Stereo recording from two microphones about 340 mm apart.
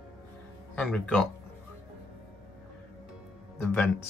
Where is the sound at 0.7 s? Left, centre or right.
Centre.